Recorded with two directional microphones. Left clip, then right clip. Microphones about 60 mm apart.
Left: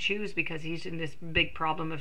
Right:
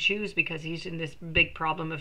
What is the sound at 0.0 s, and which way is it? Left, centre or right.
Speech, left.